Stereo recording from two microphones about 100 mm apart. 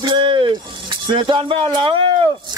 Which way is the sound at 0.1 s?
55° right (ahead or behind).